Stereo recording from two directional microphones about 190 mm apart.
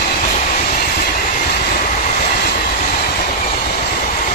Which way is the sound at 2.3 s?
55° left (ahead or behind).